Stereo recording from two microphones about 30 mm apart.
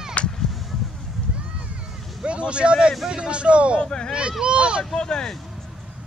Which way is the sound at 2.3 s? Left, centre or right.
Right.